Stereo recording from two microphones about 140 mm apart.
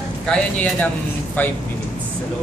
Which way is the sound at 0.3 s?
10° left (ahead or behind).